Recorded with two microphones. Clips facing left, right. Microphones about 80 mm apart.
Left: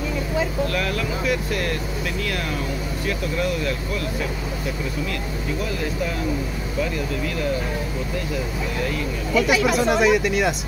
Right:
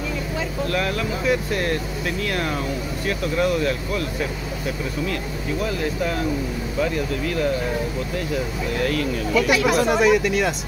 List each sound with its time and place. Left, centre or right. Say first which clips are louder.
0.7 s speech: right 1 dB; right
3.1 s speech: right 3 dB; right
9.3 s speech: even; centre